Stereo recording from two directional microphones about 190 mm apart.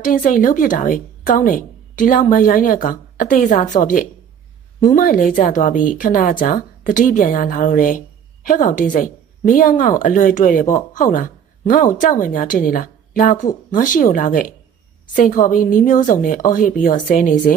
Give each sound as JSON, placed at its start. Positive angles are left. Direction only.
{"t": 0.0, "sound": "speech", "side_deg": 45}